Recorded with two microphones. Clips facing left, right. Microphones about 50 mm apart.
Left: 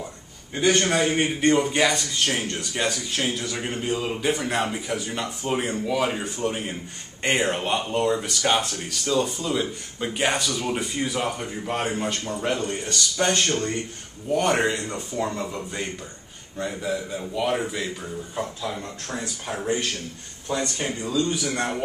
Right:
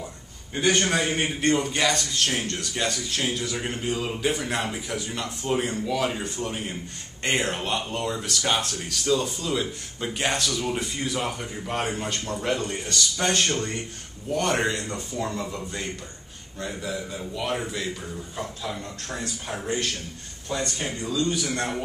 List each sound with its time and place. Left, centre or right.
0.7 s a man's voice: centre
1.5 s a man's voice: centre
5.1 s a man's voice: centre
20.4 s speech: centre